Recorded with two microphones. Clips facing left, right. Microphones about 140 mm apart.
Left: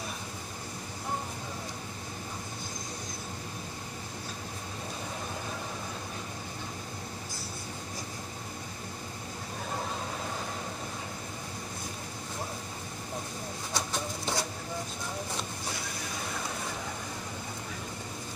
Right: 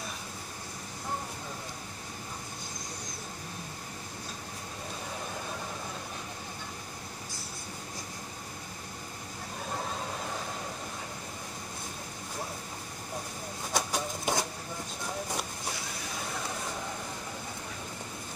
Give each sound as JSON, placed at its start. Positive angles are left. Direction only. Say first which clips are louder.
{"t": 13.7, "sound": "pigeon", "louder": "right 3 dB", "side_deg": -20}